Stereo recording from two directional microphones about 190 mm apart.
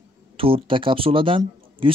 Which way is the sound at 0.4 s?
30° right (ahead or behind).